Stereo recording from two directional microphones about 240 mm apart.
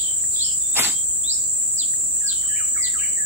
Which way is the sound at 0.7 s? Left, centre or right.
Centre.